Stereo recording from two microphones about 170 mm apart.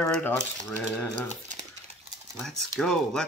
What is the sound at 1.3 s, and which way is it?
Crumpling, 45° right (ahead or behind).